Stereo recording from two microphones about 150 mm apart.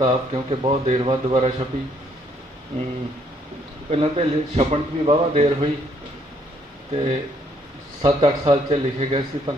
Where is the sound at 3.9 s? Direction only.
40° right (ahead or behind).